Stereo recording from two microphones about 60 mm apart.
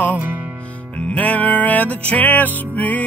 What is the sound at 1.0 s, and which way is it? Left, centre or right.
Music, left.